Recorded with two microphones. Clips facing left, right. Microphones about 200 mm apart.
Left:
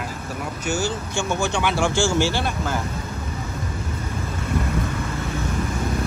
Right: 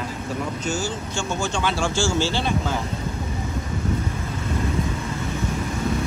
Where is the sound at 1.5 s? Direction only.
15° left (ahead or behind).